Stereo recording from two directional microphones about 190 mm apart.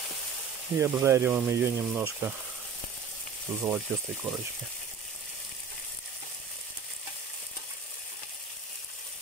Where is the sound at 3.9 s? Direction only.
10° right (ahead or behind).